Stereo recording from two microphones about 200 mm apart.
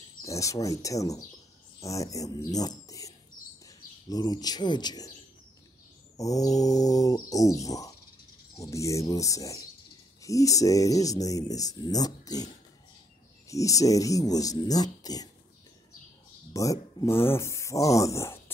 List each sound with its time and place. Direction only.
0.2 s speech: 15° left (ahead or behind)
6.1 s speech: 15° left (ahead or behind)
13.5 s speech: 15° left (ahead or behind)
16.5 s speech: 15° left (ahead or behind)